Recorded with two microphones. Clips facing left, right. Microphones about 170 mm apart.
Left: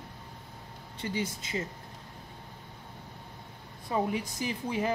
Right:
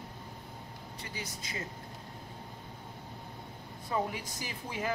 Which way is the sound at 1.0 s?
25° left (ahead or behind).